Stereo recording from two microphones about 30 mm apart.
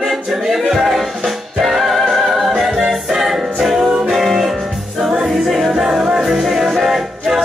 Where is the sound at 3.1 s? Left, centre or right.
Centre.